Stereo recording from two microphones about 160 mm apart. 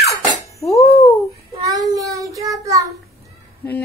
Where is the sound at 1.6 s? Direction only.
20° right (ahead or behind).